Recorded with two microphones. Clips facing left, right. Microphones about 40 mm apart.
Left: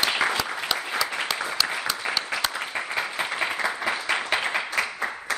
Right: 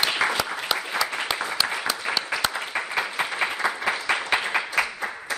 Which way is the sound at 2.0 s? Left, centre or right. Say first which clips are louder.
Right 1 dB; centre.